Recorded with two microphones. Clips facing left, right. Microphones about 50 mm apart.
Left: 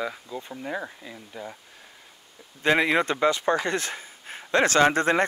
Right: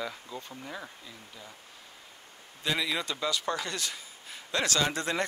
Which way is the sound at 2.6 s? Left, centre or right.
Left.